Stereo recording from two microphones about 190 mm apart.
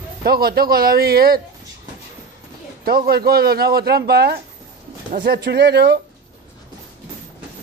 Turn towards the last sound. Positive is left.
turn(degrees=-60)  # may be behind; listen again after turning